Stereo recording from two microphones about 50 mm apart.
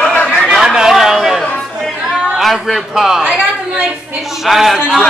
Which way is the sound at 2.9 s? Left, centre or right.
Centre.